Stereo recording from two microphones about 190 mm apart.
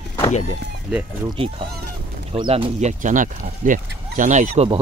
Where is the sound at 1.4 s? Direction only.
30° right (ahead or behind).